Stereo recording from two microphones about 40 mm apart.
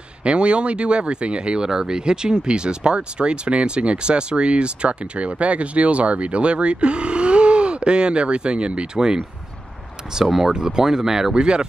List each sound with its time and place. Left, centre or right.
0.2 s speech: right